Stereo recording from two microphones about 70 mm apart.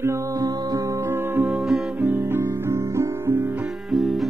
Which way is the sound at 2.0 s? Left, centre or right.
Right.